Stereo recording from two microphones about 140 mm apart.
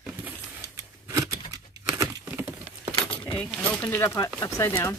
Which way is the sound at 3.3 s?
5° left (ahead or behind).